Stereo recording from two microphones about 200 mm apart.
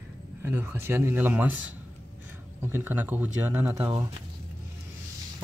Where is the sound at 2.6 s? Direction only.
10° right (ahead or behind).